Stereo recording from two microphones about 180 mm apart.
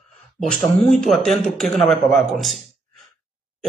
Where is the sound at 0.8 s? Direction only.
5° left (ahead or behind).